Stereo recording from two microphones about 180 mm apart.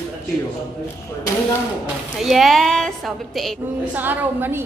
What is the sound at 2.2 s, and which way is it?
A woman's voice, centre (ahead or behind).